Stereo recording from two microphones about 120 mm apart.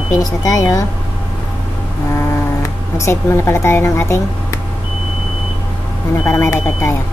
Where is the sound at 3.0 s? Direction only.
20° left (ahead or behind).